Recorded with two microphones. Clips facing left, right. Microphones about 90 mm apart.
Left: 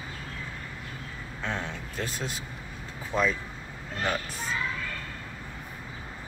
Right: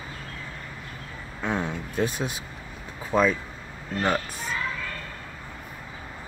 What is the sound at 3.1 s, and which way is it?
Speech, 60° right (ahead or behind).